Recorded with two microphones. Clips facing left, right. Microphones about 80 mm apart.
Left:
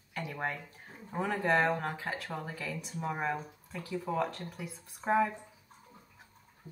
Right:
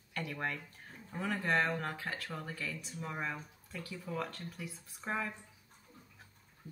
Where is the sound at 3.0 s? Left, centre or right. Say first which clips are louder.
Left 6 dB; left.